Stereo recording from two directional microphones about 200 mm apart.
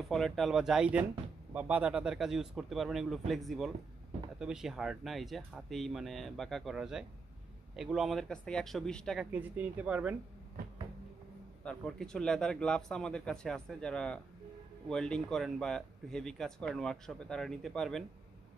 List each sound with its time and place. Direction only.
0.0 s speech: centre (ahead or behind)
11.6 s speech: 5° left (ahead or behind)